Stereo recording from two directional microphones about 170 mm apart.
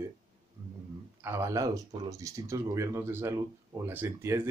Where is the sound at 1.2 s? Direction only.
15° right (ahead or behind).